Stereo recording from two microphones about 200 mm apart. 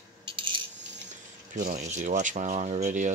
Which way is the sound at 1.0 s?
40° right (ahead or behind).